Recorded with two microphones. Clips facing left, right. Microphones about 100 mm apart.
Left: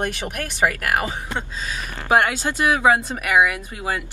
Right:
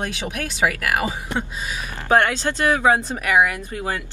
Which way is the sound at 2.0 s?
10° left (ahead or behind).